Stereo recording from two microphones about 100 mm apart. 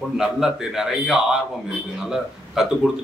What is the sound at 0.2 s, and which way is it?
A man's voice, 5° right (ahead or behind).